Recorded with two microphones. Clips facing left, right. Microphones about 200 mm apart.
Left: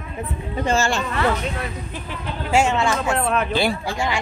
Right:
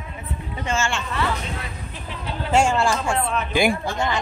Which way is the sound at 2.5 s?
5° left (ahead or behind).